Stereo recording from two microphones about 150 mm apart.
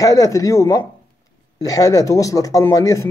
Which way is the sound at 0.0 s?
25° left (ahead or behind).